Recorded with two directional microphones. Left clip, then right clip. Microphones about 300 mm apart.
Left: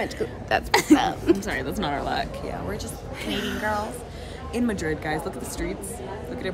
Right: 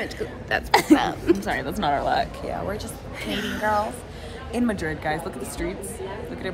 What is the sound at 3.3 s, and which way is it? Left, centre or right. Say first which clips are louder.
Speech: even; centre.